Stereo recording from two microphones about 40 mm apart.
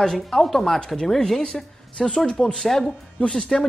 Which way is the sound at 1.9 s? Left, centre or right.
Left.